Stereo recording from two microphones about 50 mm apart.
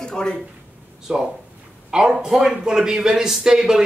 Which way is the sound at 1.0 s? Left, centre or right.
Centre.